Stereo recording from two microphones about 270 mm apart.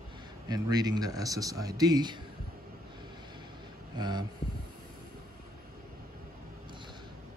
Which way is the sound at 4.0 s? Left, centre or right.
Centre.